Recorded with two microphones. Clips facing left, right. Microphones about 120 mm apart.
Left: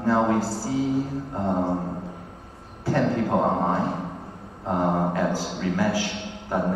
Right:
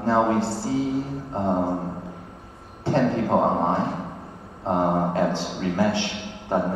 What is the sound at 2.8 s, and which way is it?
A man's voice, 25° right (ahead or behind).